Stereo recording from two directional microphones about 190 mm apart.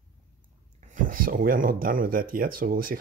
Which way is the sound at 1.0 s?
45° right (ahead or behind).